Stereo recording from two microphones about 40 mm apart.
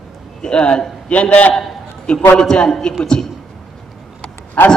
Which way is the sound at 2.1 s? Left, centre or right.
Left.